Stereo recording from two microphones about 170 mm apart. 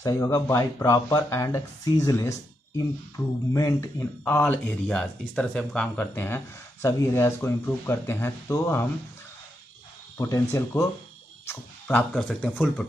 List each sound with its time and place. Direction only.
0.0 s speech: 20° left (ahead or behind)
10.1 s speech: 15° left (ahead or behind)